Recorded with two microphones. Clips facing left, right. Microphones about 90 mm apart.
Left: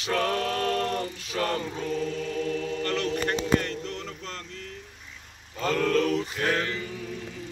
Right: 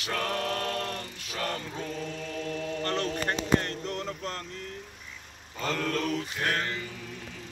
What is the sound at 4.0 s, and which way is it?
Music, 10° right (ahead or behind).